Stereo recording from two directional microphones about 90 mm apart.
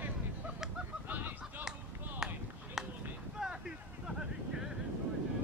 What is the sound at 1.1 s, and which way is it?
Honk, 20° right (ahead or behind).